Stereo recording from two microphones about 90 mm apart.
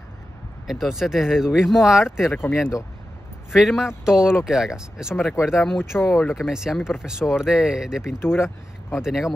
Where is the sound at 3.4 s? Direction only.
Centre (ahead or behind).